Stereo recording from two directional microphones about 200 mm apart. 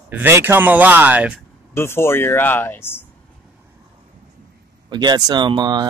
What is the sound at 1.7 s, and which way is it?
Speech, 10° left (ahead or behind).